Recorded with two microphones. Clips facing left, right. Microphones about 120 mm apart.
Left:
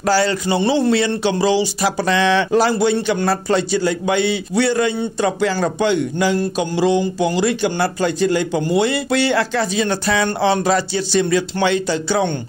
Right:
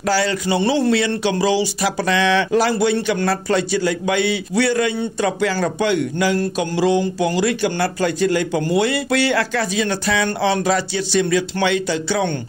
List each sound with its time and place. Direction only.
0.0 s speech: 35° left (ahead or behind)